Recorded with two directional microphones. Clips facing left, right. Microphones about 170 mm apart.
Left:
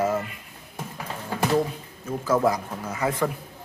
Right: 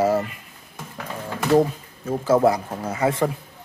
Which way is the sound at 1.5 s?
40° right (ahead or behind).